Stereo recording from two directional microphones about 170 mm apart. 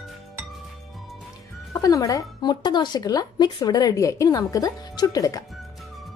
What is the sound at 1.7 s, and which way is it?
Speech, 20° left (ahead or behind).